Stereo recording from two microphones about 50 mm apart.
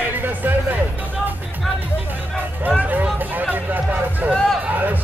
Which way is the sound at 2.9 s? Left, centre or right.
Right.